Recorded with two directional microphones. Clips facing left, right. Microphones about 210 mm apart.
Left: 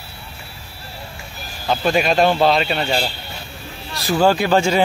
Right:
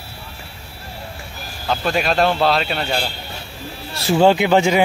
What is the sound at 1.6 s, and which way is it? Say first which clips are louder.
Speech: left 2 dB; centre (ahead or behind).